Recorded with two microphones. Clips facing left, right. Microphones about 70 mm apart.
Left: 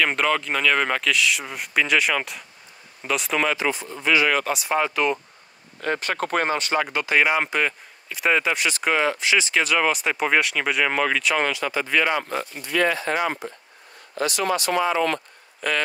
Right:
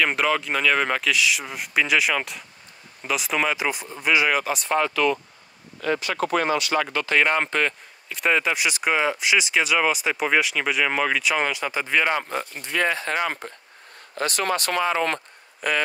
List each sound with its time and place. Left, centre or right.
0.0 s speech: centre
4.6 s speech: centre
4.9 s speech: left
5.8 s speech: left
6.8 s speech: centre
8.6 s speech: centre
12.5 s speech: right
13.4 s speech: right
15.6 s speech: centre